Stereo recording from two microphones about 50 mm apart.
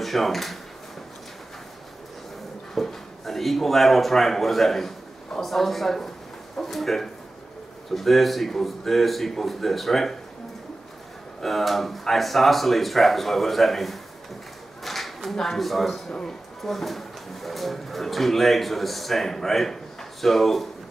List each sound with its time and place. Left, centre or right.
0.0 s speech: centre
2.7 s speech: centre
11.4 s speech: centre
16.1 s speech: centre
16.6 s speech: centre